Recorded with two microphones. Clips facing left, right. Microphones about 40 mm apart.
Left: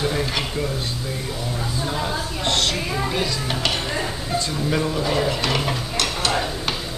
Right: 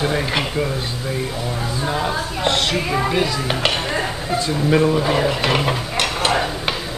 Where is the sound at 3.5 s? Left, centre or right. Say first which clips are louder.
Right 4 dB; right.